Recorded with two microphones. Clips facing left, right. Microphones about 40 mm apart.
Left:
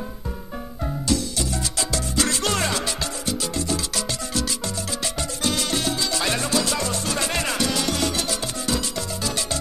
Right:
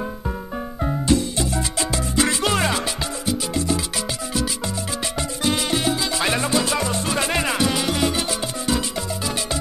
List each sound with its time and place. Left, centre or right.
1.8 s music: right
5.5 s music: centre